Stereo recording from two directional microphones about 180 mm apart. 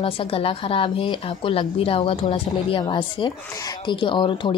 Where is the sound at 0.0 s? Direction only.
30° left (ahead or behind).